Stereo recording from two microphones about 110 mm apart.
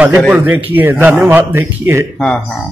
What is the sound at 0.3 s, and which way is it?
Speech, 15° right (ahead or behind).